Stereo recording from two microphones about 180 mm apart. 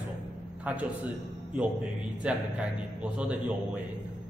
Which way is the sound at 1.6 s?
5° right (ahead or behind).